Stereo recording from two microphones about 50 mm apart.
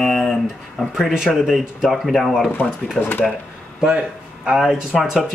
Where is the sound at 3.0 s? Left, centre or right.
Left.